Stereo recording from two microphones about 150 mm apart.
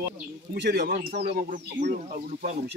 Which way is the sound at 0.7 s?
90° right.